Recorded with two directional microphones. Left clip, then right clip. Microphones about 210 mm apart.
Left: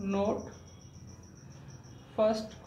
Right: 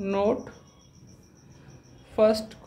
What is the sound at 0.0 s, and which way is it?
Speech, 55° right (ahead or behind).